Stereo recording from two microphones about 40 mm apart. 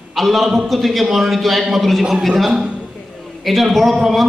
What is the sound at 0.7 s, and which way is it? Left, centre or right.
A man's voice, centre.